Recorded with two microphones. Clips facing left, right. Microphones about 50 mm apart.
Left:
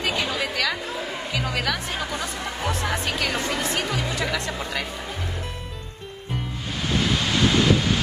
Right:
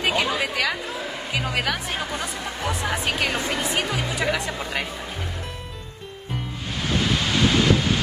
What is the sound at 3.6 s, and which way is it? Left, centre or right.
Speech, centre.